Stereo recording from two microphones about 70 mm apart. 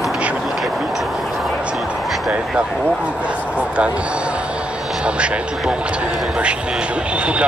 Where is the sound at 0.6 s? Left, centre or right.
Centre.